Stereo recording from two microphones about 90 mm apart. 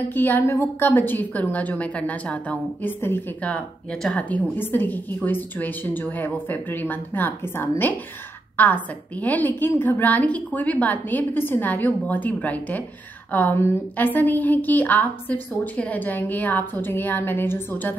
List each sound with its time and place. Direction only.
0.1 s a woman's voice: 25° left (ahead or behind)
3.4 s a woman's voice: 15° left (ahead or behind)